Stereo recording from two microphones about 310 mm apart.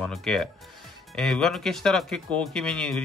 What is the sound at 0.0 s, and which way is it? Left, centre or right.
Speech, centre.